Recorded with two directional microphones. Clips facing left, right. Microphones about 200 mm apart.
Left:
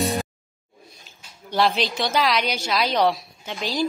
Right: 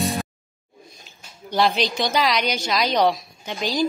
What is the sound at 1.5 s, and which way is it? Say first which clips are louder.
A woman's voice: right 1 dB; centre (ahead or behind).